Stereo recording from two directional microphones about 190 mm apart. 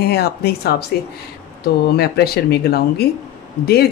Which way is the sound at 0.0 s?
55° left (ahead or behind).